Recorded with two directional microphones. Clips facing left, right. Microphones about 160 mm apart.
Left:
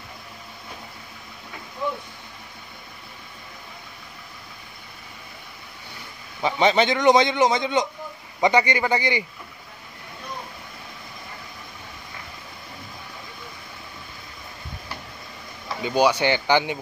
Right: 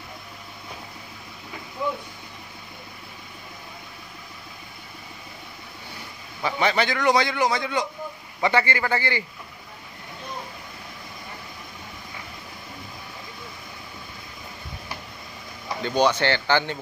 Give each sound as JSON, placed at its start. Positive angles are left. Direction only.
{"t": 6.4, "sound": "a man's voice", "side_deg": 20}
{"t": 15.8, "sound": "speech", "side_deg": 10}